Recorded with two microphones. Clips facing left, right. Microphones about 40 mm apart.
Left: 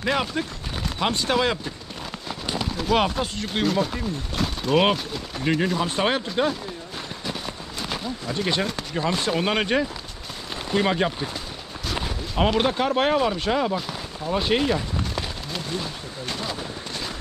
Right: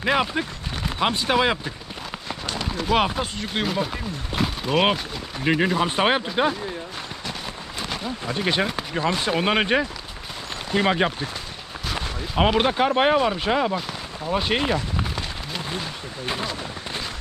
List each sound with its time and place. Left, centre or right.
0.0 s speech: centre
2.4 s speech: centre
5.4 s speech: centre
7.8 s speech: centre
12.4 s speech: centre
15.8 s artillery fire: right